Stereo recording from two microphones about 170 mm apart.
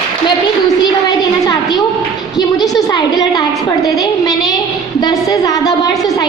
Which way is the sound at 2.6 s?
20° left (ahead or behind).